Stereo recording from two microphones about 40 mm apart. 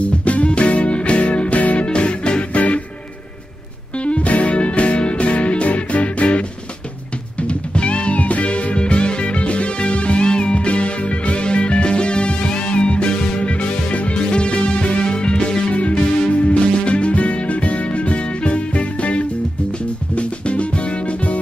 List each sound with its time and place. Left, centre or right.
0.0 s music: left
1.9 s music: left
4.0 s music: left